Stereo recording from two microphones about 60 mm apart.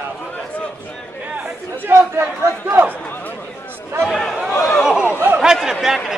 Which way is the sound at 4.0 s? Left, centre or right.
Centre.